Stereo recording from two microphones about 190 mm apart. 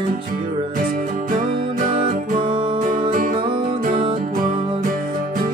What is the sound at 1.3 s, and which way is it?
Music, 45° right (ahead or behind).